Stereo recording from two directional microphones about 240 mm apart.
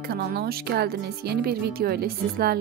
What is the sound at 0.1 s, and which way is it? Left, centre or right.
Speech, right.